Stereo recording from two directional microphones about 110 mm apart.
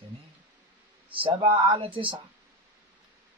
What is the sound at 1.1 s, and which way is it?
Speech, 50° right (ahead or behind).